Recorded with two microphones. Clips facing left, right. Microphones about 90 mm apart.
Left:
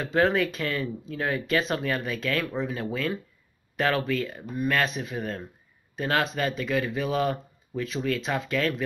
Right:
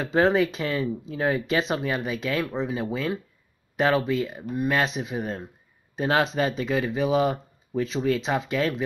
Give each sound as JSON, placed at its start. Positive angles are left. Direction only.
{"t": 0.0, "sound": "speech", "side_deg": -25}